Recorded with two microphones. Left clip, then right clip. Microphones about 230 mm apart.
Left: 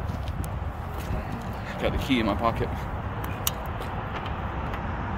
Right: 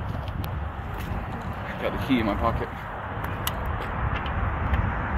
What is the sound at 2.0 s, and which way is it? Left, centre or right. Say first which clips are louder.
Speech: right 1 dB; centre.